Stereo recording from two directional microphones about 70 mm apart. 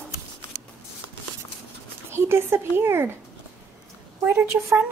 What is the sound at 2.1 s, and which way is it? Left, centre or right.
Speech, right.